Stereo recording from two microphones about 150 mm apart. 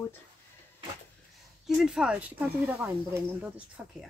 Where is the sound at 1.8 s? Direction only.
5° right (ahead or behind).